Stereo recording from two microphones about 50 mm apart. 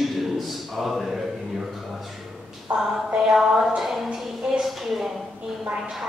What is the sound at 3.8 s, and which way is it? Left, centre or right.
A man's voice, centre.